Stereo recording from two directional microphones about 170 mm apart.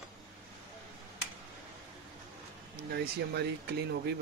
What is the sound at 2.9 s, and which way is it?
Speech, 75° right (ahead or behind).